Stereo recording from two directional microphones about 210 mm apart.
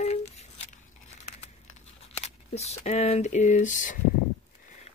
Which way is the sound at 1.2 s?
30° left (ahead or behind).